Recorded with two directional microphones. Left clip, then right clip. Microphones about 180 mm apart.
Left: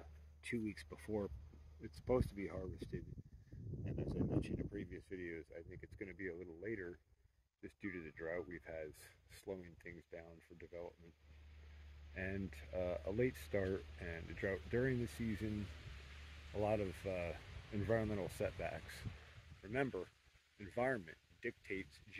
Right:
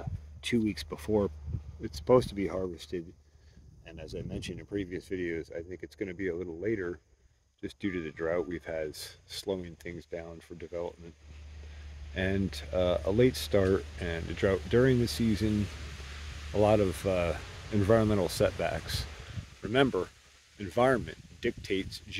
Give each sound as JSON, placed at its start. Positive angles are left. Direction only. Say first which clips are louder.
{"t": 0.0, "sound": "speech", "louder": "right 15 dB", "side_deg": -10}
{"t": 12.1, "sound": "speech", "louder": "right 14 dB", "side_deg": -20}
{"t": 16.5, "sound": "speech", "louder": "right 14 dB", "side_deg": -25}